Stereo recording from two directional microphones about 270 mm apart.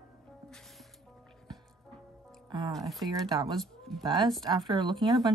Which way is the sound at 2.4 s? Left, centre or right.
Centre.